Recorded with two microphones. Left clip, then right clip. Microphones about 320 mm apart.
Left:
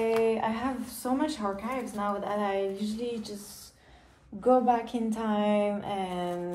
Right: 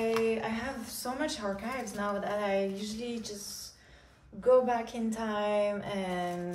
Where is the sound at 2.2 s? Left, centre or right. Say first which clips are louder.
Even; centre.